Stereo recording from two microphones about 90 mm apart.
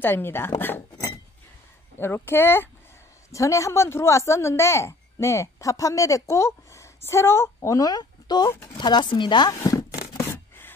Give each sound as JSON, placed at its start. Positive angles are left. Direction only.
{"t": 0.0, "sound": "a woman's voice", "side_deg": 25}
{"t": 2.0, "sound": "a woman's voice", "side_deg": 25}
{"t": 3.3, "sound": "a child's voice", "side_deg": 35}
{"t": 8.5, "sound": "a woman's voice", "side_deg": 30}
{"t": 8.7, "sound": "speech", "side_deg": 55}
{"t": 9.5, "sound": "chopping", "side_deg": 40}
{"t": 10.1, "sound": "scissors", "side_deg": 25}